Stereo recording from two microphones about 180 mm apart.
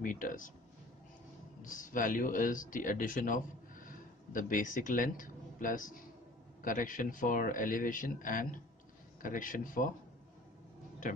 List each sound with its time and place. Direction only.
0.0 s speech: 50° left (ahead or behind)
1.6 s a man's voice: 45° left (ahead or behind)